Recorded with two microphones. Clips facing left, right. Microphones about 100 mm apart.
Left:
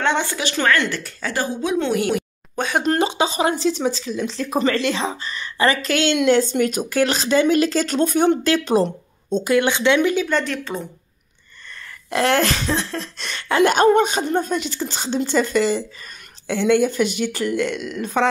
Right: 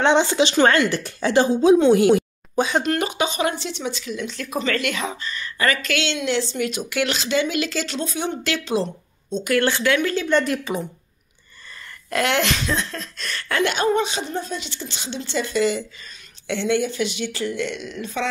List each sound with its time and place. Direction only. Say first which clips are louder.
0.0 s a woman's voice: right 4 dB; 20° right (ahead or behind)
2.8 s speech: left 3 dB; 30° left (ahead or behind)
9.5 s speech: left 2 dB; 20° left (ahead or behind)
10.4 s a woman's voice: right 2 dB; 10° right (ahead or behind)
12.1 s speech: left 3 dB; 35° left (ahead or behind)
13.4 s a sound: left 6 dB; 30° left (ahead or behind)
13.7 s speech: left 6 dB; 50° left (ahead or behind)